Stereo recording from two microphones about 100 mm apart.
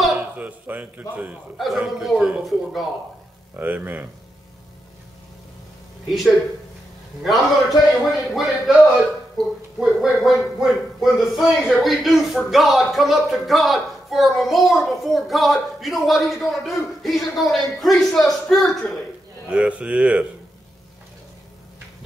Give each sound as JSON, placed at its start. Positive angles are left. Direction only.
{"t": 0.2, "sound": "speech", "side_deg": -15}
{"t": 1.6, "sound": "speech", "side_deg": 0}
{"t": 3.5, "sound": "speech", "side_deg": -20}
{"t": 6.0, "sound": "speech", "side_deg": 0}
{"t": 7.9, "sound": "speech", "side_deg": 0}
{"t": 19.5, "sound": "speech", "side_deg": -10}